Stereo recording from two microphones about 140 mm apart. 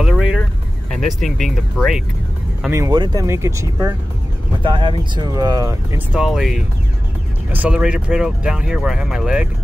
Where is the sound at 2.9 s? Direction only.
35° right (ahead or behind).